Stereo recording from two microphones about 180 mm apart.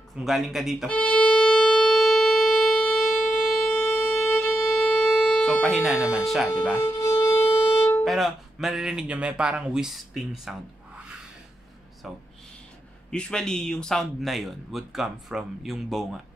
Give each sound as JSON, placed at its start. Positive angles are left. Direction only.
{"t": 0.2, "sound": "music", "side_deg": 0}
{"t": 6.0, "sound": "speech", "side_deg": 0}
{"t": 6.8, "sound": "music", "side_deg": 15}
{"t": 7.8, "sound": "speech", "side_deg": 5}
{"t": 12.0, "sound": "speech", "side_deg": 0}